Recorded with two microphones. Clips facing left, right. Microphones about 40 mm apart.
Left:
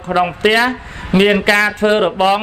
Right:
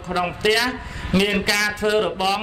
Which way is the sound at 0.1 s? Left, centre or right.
Left.